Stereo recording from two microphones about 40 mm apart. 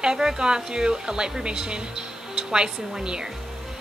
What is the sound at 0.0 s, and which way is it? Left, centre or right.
Speech, centre.